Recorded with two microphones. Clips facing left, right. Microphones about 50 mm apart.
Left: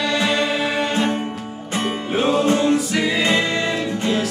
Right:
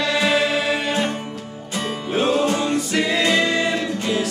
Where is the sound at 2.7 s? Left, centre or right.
Centre.